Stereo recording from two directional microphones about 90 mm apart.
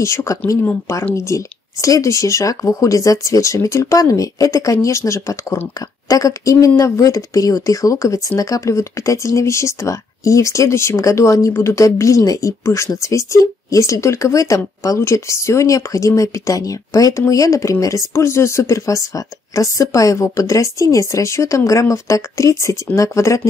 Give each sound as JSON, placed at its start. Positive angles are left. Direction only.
{"t": 0.0, "sound": "speech", "side_deg": 35}